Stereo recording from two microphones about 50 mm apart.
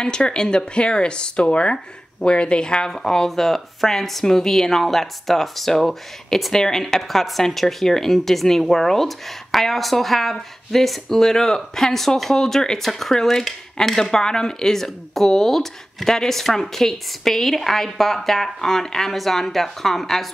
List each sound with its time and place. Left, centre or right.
0.0 s speech: centre